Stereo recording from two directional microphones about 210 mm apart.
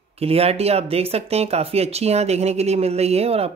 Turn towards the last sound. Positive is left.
turn(degrees=-30)  # may be behind; listen again after turning